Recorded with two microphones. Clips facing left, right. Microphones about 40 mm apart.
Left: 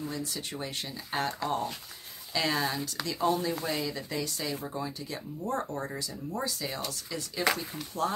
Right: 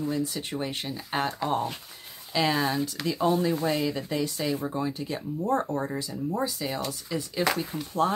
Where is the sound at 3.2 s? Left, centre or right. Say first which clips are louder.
Right 4 dB; centre.